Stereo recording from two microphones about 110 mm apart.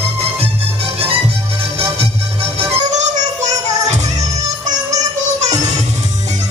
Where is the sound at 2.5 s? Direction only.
90° right.